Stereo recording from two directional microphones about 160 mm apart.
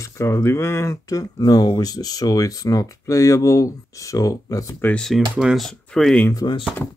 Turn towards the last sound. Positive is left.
turn(degrees=25)  # may be behind; listen again after turning